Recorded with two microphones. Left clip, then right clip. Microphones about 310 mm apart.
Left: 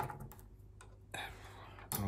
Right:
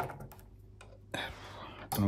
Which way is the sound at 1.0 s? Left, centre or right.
Right.